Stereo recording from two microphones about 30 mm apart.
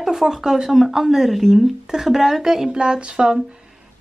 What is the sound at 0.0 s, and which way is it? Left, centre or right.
Speech, centre.